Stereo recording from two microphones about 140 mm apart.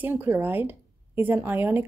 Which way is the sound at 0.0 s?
15° right (ahead or behind).